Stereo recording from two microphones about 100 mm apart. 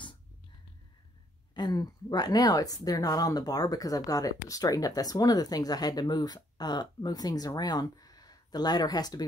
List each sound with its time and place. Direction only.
1.5 s a woman's voice: 45° left (ahead or behind)